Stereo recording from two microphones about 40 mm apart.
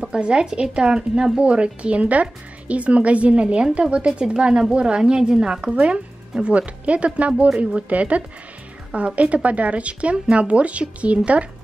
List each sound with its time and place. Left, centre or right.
0.0 s a woman's voice: right
1.4 s a woman's voice: right
5.6 s speech: right